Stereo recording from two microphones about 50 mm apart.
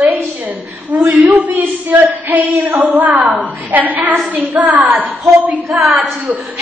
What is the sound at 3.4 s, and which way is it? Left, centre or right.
Speech, right.